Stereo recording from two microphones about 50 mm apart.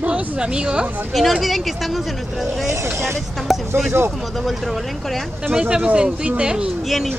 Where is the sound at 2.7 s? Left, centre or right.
Right.